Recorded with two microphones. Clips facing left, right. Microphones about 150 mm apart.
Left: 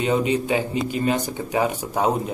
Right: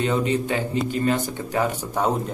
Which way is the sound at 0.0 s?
15° left (ahead or behind).